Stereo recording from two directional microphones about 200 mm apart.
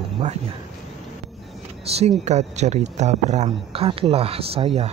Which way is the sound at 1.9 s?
30° right (ahead or behind).